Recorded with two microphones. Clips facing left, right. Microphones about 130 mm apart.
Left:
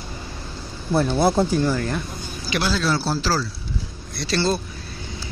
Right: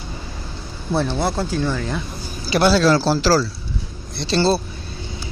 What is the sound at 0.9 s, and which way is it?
Speech, 5° left (ahead or behind).